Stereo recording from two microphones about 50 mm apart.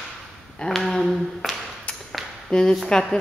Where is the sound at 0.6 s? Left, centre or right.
Centre.